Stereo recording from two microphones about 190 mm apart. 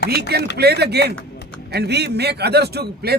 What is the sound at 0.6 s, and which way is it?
A man's voice, 60° right (ahead or behind).